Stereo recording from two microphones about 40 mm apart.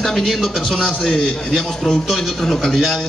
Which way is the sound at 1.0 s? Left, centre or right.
Centre.